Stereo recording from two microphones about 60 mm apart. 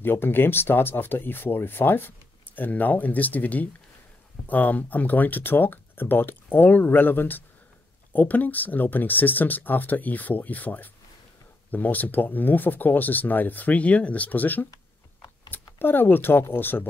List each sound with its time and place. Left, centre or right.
0.0 s speech: left